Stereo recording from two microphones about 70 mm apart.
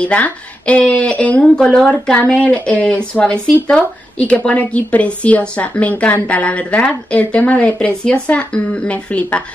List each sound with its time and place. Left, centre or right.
0.0 s a woman's voice: centre